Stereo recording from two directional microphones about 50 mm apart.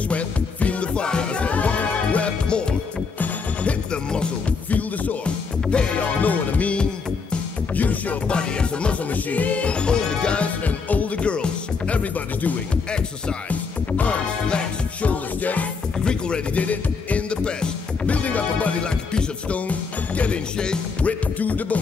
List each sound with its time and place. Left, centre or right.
0.1 s music: left
3.9 s music: centre
4.6 s music: left
6.2 s music: left
8.3 s music: left
9.1 s music: left
16.0 s music: centre
16.5 s music: left
20.5 s music: centre
21.0 s music: left